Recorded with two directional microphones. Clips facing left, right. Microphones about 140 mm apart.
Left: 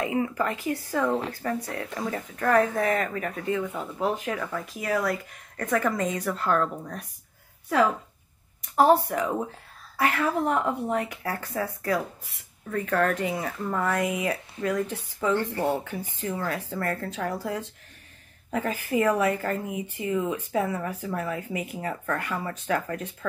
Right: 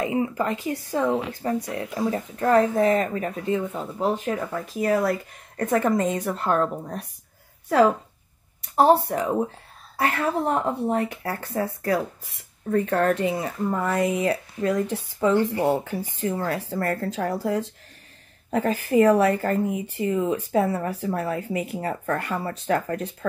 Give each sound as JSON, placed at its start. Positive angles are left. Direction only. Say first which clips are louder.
{"t": 0.0, "sound": "speech", "louder": "right 2 dB", "side_deg": -25}
{"t": 8.7, "sound": "speech", "louder": "right 2 dB", "side_deg": -30}
{"t": 15.5, "sound": "speech", "louder": "right 4 dB", "side_deg": -15}
{"t": 15.8, "sound": "speech", "louder": "right 5 dB", "side_deg": -35}